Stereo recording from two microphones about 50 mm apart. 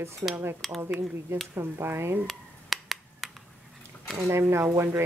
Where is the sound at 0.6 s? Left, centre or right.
Centre.